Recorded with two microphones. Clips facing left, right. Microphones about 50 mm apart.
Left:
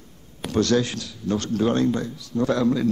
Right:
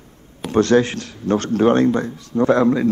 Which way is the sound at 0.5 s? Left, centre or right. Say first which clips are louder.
Right 6 dB; right.